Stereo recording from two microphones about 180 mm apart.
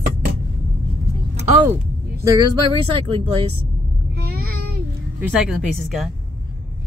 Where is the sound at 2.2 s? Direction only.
25° right (ahead or behind).